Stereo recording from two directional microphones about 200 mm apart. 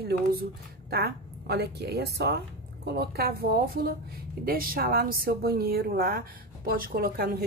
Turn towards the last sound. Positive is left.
turn(degrees=-45)  # may be behind; listen again after turning